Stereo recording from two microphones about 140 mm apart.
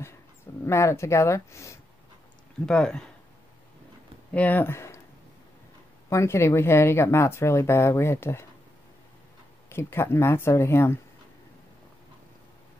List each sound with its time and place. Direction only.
0.7 s speech: 20° left (ahead or behind)
2.6 s speech: 5° left (ahead or behind)
4.3 s speech: 10° left (ahead or behind)
6.0 s speech: 20° left (ahead or behind)
9.7 s speech: 15° left (ahead or behind)